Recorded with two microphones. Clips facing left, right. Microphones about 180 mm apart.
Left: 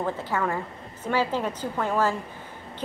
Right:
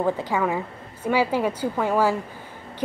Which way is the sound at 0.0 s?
15° right (ahead or behind).